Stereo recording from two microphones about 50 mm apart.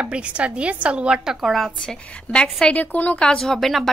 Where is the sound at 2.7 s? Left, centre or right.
Left.